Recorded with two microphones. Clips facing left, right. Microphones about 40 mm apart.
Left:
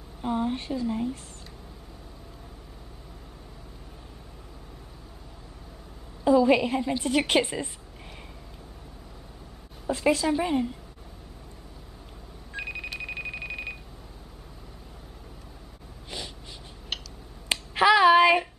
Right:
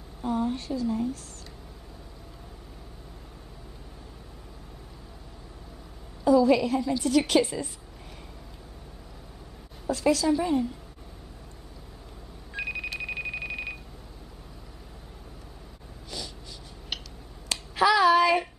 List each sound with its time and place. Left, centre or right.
0.2 s a woman's voice: left
6.2 s a woman's voice: left
9.8 s a woman's voice: left
12.5 s telephone bell ringing: centre
16.1 s snort: left
16.9 s a sound: centre
17.5 s finger snapping: left